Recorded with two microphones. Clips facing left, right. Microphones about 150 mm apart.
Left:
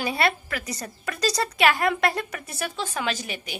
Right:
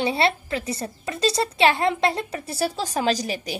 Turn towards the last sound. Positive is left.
turn(degrees=-35)  # may be behind; listen again after turning